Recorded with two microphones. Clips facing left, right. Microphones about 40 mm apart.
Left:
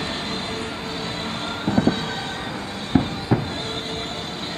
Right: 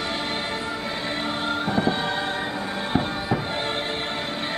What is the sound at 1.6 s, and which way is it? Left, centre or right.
Music, centre.